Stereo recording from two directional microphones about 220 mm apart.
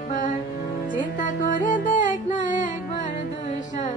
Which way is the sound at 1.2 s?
35° left (ahead or behind).